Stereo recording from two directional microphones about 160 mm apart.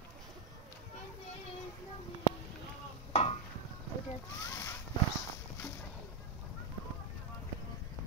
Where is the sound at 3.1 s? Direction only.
40° left (ahead or behind).